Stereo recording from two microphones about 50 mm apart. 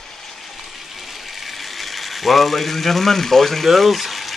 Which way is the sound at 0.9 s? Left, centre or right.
Centre.